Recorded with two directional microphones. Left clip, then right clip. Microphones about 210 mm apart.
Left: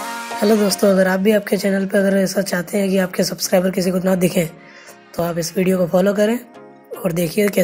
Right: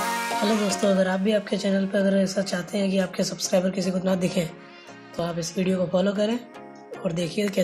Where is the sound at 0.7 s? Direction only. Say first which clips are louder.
Left 7 dB; 30° left (ahead or behind).